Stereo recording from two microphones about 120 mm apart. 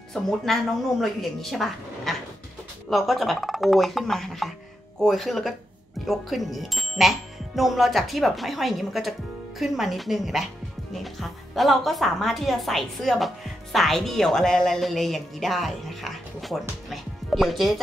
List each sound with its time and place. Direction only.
0.1 s speech: centre (ahead or behind)